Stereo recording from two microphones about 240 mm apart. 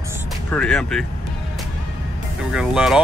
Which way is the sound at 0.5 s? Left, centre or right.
Centre.